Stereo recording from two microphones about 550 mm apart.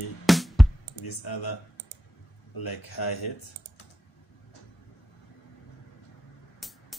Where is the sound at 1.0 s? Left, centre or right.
Left.